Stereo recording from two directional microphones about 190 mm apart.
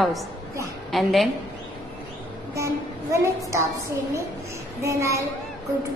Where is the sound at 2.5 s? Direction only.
15° right (ahead or behind).